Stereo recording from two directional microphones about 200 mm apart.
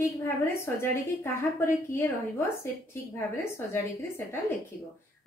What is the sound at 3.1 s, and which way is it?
Speech, 15° left (ahead or behind).